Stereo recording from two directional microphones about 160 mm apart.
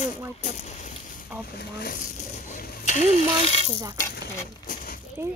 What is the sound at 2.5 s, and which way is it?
Coin, 50° left (ahead or behind).